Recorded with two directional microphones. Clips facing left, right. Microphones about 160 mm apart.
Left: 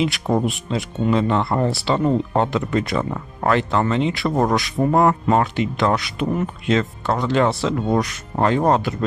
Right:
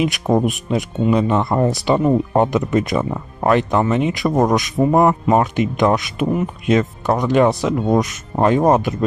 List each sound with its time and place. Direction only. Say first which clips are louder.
0.1 s speech: right 3 dB; 20° right (ahead or behind)